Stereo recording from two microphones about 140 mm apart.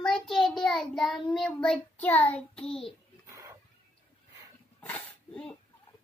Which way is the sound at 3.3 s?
20° right (ahead or behind).